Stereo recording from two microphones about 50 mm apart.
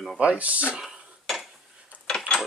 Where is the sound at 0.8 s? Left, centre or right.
Centre.